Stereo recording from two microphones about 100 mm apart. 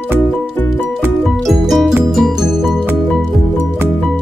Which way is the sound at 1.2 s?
Centre (ahead or behind).